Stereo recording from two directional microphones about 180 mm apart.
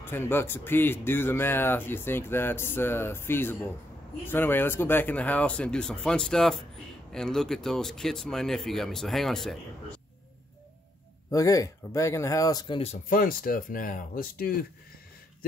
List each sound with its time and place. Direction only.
0.0 s speech: 10° left (ahead or behind)
11.2 s speech: 15° left (ahead or behind)
12.9 s speech: 50° left (ahead or behind)